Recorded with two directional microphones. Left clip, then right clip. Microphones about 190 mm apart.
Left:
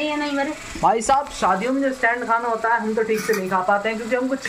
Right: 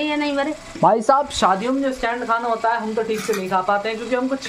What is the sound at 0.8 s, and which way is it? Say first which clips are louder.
Speech: right 2 dB; 35° right (ahead or behind).